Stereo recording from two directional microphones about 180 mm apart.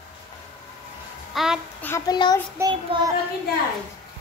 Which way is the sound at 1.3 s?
5° right (ahead or behind).